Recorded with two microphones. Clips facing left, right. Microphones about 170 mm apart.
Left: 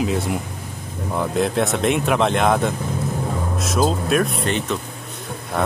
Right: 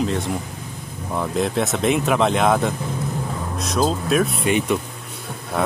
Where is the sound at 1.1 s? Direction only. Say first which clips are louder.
Left 1 dB; centre (ahead or behind).